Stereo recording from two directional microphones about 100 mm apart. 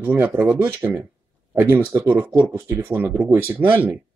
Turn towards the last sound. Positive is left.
turn(degrees=-20)  # may be behind; listen again after turning